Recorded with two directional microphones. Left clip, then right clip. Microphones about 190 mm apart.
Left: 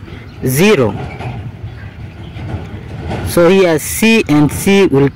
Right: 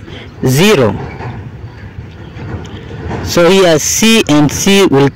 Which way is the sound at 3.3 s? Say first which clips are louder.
Right 2 dB; 20° right (ahead or behind).